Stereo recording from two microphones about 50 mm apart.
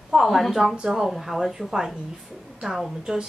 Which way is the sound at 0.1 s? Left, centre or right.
Centre.